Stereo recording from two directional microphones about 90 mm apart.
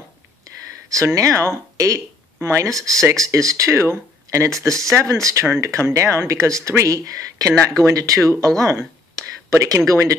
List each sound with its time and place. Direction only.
0.8 s speech: 35° right (ahead or behind)
4.6 s speech: 5° left (ahead or behind)
4.9 s speech: 35° right (ahead or behind)